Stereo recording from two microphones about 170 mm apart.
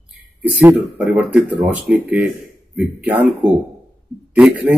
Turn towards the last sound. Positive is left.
turn(degrees=-5)  # may be behind; listen again after turning